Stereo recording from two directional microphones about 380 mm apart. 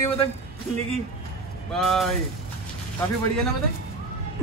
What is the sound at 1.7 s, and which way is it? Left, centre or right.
Speech, centre.